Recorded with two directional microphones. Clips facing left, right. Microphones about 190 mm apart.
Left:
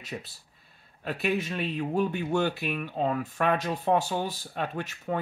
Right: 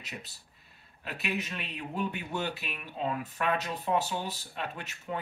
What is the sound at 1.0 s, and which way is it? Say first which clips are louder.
Speech: left 7 dB; 45° left (ahead or behind).